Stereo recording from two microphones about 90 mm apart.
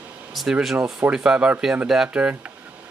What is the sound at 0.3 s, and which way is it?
Speech, centre (ahead or behind).